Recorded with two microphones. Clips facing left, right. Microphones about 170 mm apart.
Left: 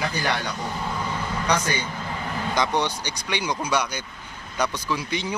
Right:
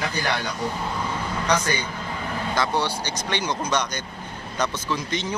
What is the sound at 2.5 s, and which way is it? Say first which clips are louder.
Speech: left 1 dB; 15° left (ahead or behind).